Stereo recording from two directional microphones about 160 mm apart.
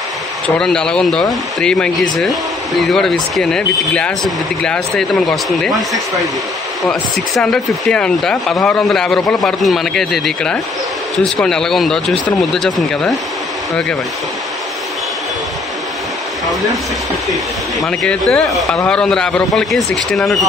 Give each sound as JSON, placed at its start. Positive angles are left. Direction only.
{"t": 0.6, "sound": "speech", "side_deg": 5}
{"t": 6.9, "sound": "speech", "side_deg": 0}
{"t": 17.7, "sound": "speech", "side_deg": 5}